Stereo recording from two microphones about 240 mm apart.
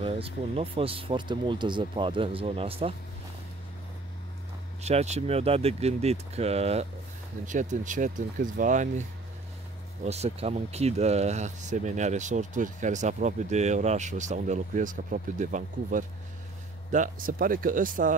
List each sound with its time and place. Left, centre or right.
0.0 s speech: right
4.8 s speech: right
10.0 s speech: right